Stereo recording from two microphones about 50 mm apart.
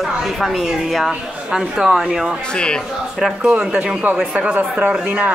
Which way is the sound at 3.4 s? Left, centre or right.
Right.